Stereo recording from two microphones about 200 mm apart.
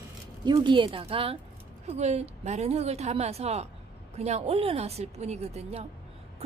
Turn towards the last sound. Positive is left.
turn(degrees=-30)  # may be behind; listen again after turning